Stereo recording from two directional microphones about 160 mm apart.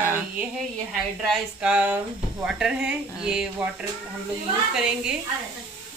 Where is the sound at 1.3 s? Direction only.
5° right (ahead or behind).